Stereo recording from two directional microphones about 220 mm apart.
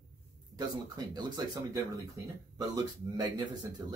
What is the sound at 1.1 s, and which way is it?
Speech, 15° right (ahead or behind).